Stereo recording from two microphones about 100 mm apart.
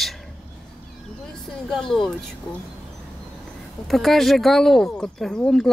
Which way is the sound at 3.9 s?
Centre (ahead or behind).